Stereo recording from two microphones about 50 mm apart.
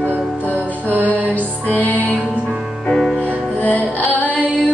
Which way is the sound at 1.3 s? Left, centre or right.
Left.